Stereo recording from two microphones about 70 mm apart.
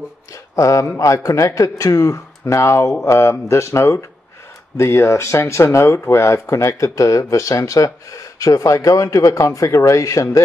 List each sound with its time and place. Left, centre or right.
0.3 s speech: left